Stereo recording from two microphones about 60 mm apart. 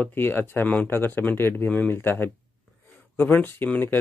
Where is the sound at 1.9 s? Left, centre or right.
Left.